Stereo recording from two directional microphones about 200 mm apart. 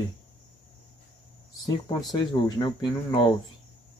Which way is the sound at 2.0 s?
20° left (ahead or behind).